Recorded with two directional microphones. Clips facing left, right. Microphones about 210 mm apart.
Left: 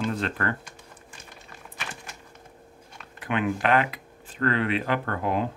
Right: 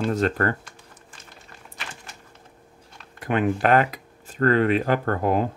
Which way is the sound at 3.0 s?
40° right (ahead or behind).